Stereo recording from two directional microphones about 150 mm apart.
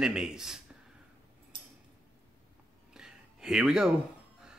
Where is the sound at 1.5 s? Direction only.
30° right (ahead or behind).